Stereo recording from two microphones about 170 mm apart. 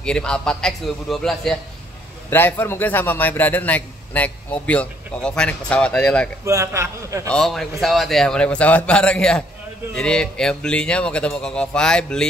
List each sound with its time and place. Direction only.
0.0 s a man's voice: 5° left (ahead or behind)
6.4 s a man's voice: 15° right (ahead or behind)
7.2 s speech: 5° left (ahead or behind)